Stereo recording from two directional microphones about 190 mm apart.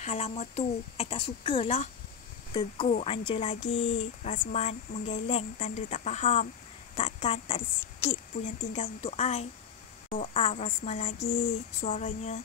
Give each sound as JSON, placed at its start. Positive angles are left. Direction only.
{"t": 0.0, "sound": "speech", "side_deg": 35}
{"t": 2.9, "sound": "speech", "side_deg": 30}